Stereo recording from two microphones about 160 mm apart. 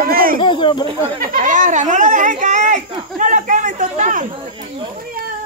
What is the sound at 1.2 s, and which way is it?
Speech, 55° right (ahead or behind).